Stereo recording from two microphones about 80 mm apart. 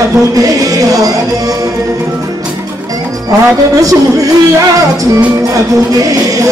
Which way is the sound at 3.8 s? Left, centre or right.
Right.